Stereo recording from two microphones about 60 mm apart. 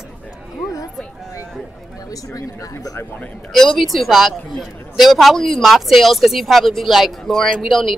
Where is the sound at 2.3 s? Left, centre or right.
Left.